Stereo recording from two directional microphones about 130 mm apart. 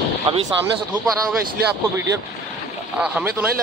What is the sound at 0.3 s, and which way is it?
Speech, 40° right (ahead or behind).